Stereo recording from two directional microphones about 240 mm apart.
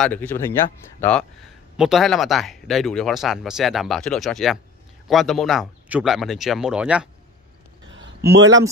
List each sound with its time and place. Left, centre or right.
0.0 s speech: centre
1.8 s speech: centre
7.9 s a sound: right